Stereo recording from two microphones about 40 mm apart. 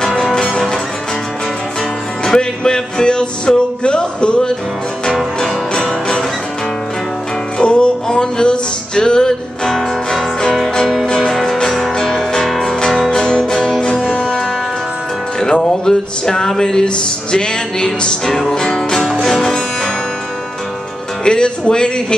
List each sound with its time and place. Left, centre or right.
0.0 s music: centre
0.3 s music: centre
2.2 s music: centre
7.5 s music: left
14.0 s music: left
15.6 s music: centre
21.2 s music: left